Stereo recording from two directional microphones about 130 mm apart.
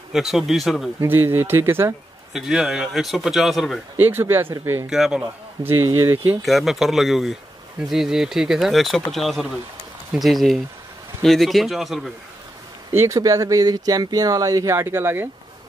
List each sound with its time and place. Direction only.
0.1 s speech: 5° right (ahead or behind)
1.0 s speech: 15° right (ahead or behind)
2.3 s speech: 5° right (ahead or behind)
3.9 s speech: 15° right (ahead or behind)
4.8 s speech: 5° right (ahead or behind)
5.6 s speech: 15° right (ahead or behind)
6.4 s speech: centre (ahead or behind)
12.9 s speech: 20° right (ahead or behind)